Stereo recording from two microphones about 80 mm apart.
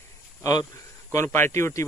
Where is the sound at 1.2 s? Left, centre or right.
Left.